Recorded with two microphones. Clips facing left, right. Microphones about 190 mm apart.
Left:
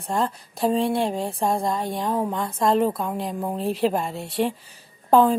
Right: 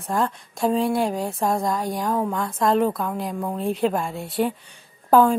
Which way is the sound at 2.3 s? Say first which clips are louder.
Even; centre (ahead or behind).